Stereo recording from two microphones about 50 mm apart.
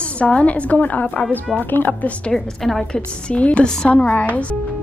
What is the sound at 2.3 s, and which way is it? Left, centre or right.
Speech, centre.